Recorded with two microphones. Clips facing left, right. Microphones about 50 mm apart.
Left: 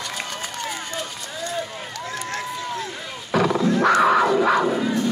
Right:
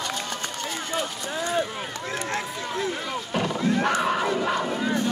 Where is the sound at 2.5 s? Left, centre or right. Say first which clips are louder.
Right 1 dB; centre.